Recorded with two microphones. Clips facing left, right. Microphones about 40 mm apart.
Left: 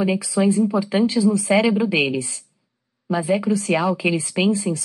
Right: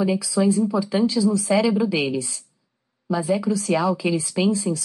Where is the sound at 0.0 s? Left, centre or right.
Left.